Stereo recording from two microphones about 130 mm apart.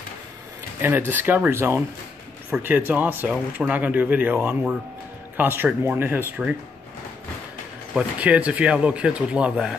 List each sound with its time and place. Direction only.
0.7 s speech: 15° right (ahead or behind)
7.9 s speech: 10° right (ahead or behind)